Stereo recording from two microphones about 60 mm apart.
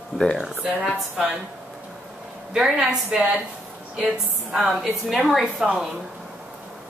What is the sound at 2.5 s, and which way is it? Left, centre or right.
Speech, centre.